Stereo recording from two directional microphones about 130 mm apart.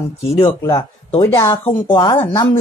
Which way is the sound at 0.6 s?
20° left (ahead or behind).